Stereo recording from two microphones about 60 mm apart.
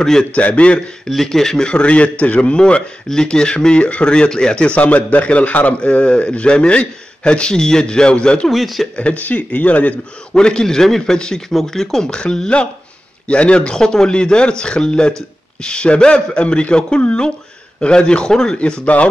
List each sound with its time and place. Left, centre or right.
0.2 s speech: left
1.0 s a man's voice: centre
8.5 s speech: centre
8.9 s speech: left
10.3 s a man's voice: centre